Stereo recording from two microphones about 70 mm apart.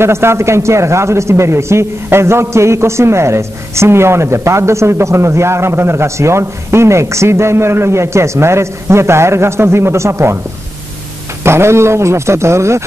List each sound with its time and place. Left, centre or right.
0.0 s a man's voice: right
11.4 s a man's voice: right